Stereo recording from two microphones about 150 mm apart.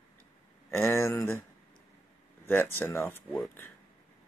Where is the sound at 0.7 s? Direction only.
15° left (ahead or behind).